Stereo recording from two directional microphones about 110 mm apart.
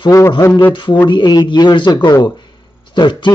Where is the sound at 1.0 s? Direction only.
40° left (ahead or behind).